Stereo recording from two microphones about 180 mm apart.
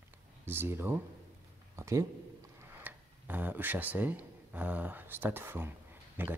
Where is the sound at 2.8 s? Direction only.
10° right (ahead or behind).